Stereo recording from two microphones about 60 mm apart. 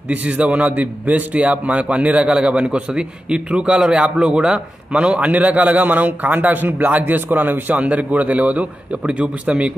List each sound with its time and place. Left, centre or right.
0.1 s a man's voice: right